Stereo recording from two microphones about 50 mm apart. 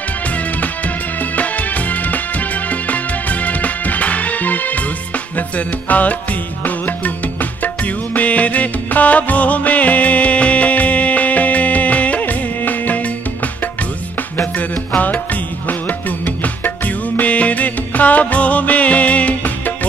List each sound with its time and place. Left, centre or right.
1.3 s music: left
5.9 s music: left
7.6 s music: left
16.6 s music: left